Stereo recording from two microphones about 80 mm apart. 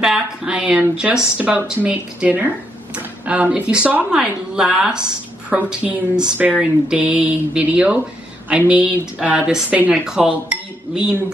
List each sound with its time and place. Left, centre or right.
0.0 s speech: centre